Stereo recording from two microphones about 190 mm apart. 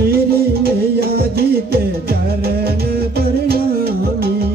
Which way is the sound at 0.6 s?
55° right (ahead or behind).